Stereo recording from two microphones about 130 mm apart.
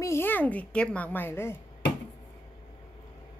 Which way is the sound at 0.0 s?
20° left (ahead or behind).